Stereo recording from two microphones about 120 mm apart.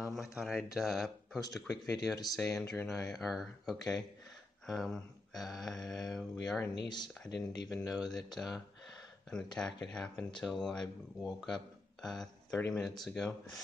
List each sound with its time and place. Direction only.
0.0 s speech: 5° right (ahead or behind)
0.7 s mantra: centre (ahead or behind)
6.9 s speech: 35° left (ahead or behind)
7.9 s mantra: 5° right (ahead or behind)
9.3 s speech: 5° left (ahead or behind)
9.9 s mantra: 5° left (ahead or behind)
12.0 s speech: 5° left (ahead or behind)